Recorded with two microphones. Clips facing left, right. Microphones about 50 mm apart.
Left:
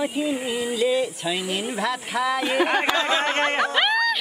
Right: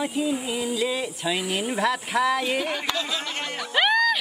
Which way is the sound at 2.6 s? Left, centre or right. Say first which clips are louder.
Left 7 dB; left.